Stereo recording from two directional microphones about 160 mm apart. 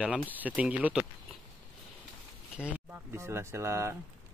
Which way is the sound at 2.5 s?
10° right (ahead or behind).